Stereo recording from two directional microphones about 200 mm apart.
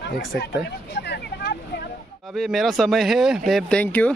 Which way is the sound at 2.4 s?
Centre (ahead or behind).